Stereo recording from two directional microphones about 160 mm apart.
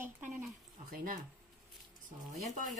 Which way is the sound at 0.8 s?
60° right (ahead or behind).